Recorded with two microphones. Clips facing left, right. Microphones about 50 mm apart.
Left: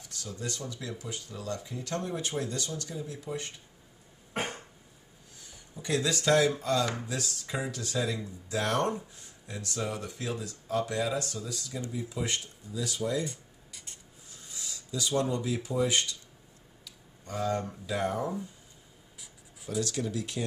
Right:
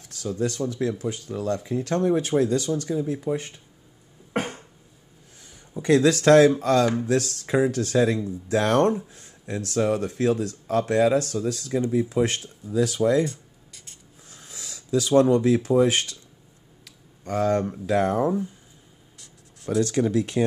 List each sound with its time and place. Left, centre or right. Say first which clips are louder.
0.5 s speech: right 12 dB; right
2.4 s speech: right 12 dB; right
2.9 s speech: right 12 dB; right
5.8 s speech: right 11 dB; right
13.3 s a sound: right 4 dB; centre
14.3 s speech: right 2 dB; right
16.8 s a sound: right 10 dB; right
17.8 s speech: right 9 dB; right
19.1 s a sound: even; centre
19.9 s speech: right 11 dB; right